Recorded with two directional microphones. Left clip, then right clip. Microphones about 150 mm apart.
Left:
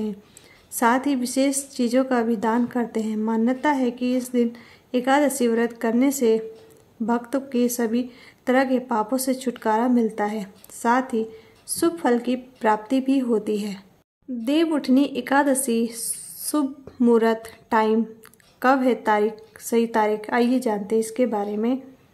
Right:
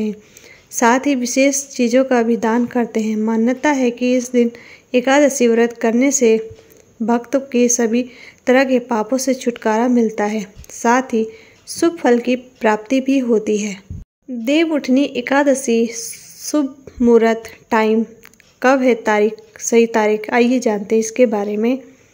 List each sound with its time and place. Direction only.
0.7 s speech: 20° right (ahead or behind)